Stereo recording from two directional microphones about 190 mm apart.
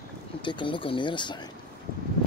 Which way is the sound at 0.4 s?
25° left (ahead or behind).